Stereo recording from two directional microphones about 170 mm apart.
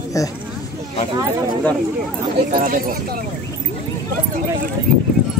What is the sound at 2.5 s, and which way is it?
Speech, 60° right (ahead or behind).